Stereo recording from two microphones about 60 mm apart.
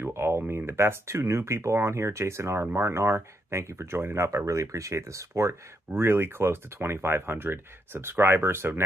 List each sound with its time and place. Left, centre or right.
0.0 s a sound: right
0.6 s speech: right
5.9 s speech: right